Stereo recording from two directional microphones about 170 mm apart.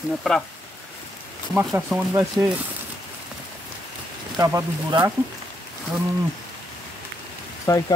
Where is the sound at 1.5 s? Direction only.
5° right (ahead or behind).